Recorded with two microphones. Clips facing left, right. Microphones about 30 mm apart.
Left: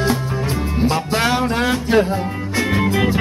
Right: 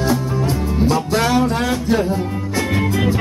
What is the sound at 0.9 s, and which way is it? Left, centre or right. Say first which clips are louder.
Music: right 1 dB; left.